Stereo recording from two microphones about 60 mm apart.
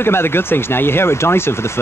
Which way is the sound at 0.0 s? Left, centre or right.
Left.